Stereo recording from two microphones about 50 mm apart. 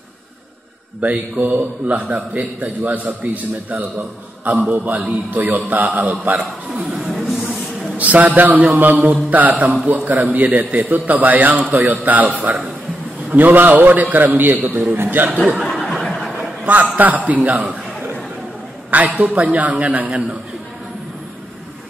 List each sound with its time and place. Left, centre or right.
1.0 s a man's voice: right
4.5 s a man's voice: right
7.0 s a sound: centre
8.0 s a man's voice: right
15.7 s a sound: centre
16.9 s a man's voice: right
18.9 s a man's voice: right